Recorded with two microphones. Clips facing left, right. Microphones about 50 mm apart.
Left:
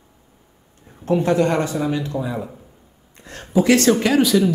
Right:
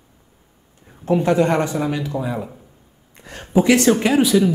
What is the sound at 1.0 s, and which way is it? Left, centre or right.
A woman's voice, right.